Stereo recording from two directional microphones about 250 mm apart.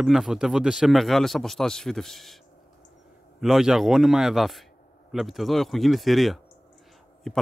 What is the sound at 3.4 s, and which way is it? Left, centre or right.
Speech, centre.